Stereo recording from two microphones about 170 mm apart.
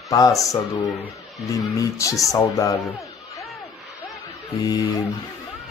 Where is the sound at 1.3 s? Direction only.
20° left (ahead or behind).